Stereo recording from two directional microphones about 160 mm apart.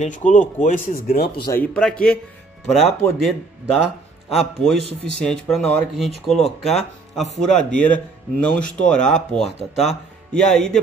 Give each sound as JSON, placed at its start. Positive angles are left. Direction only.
{"t": 0.0, "sound": "speech", "side_deg": 50}
{"t": 1.5, "sound": "a man's voice", "side_deg": 10}
{"t": 3.2, "sound": "a man's voice", "side_deg": 0}